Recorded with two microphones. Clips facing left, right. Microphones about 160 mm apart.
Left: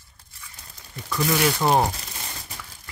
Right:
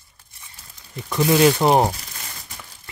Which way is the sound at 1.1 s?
20° right (ahead or behind).